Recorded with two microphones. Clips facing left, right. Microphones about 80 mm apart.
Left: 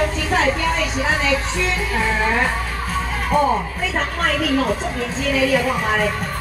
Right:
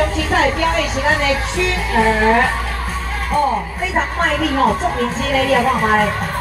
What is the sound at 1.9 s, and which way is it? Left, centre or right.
Speech, right.